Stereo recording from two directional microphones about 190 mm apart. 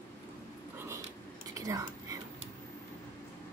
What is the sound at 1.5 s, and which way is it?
Whispering, 20° right (ahead or behind).